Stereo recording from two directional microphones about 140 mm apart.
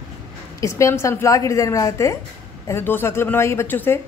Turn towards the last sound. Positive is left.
turn(degrees=15)  # may be behind; listen again after turning